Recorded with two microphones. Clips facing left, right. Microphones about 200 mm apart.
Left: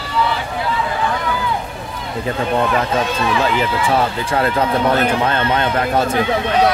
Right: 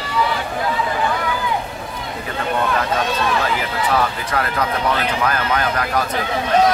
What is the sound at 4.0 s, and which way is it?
Speech, 25° left (ahead or behind).